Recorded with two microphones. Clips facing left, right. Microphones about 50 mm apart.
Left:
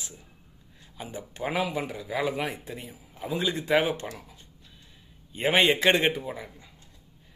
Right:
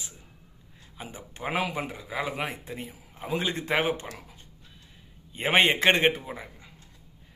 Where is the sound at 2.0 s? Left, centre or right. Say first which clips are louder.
Left 3 dB; right.